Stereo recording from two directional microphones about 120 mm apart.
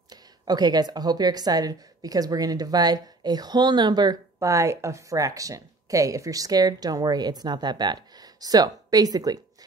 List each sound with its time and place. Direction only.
0.1 s speech: 35° right (ahead or behind)